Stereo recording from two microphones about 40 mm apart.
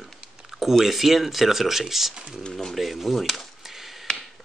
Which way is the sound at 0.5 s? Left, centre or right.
Centre.